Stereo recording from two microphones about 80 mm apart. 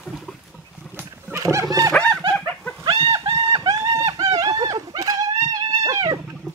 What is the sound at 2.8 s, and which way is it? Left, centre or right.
Chicken, right.